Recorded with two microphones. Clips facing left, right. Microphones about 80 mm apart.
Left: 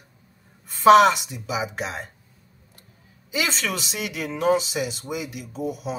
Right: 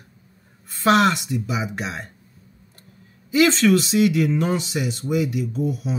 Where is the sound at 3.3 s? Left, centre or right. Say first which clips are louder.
Right 11 dB; centre.